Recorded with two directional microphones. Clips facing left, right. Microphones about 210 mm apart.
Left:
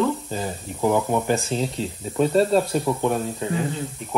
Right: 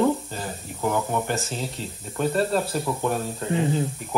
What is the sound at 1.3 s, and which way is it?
Speech, centre (ahead or behind).